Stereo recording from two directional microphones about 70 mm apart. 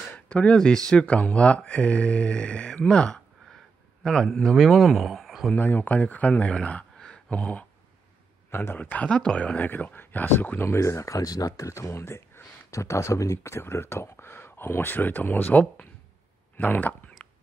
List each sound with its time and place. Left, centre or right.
0.1 s a man's voice: centre
5.5 s a man's voice: left
8.5 s speech: left
10.7 s speech: left